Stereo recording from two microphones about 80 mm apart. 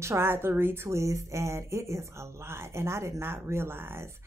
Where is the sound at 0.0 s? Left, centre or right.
Right.